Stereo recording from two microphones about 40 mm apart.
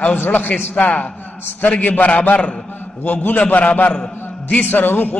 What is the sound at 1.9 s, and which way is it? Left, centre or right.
Speech, left.